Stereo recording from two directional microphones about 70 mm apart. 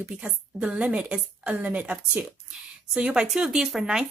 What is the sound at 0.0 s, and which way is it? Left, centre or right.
A woman's voice, centre.